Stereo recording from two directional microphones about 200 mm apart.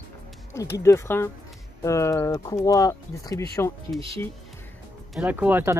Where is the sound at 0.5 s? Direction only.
15° left (ahead or behind).